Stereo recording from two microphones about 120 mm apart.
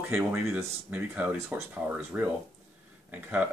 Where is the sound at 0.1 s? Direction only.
15° right (ahead or behind).